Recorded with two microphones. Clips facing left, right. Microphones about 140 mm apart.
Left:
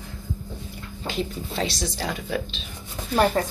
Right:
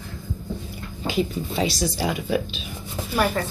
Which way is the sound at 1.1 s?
5° right (ahead or behind).